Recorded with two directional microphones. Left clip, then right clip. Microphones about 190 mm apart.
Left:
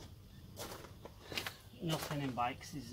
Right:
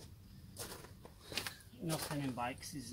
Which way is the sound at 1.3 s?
20° right (ahead or behind).